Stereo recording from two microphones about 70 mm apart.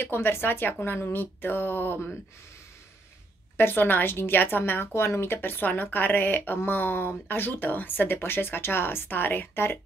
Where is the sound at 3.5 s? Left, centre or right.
Left.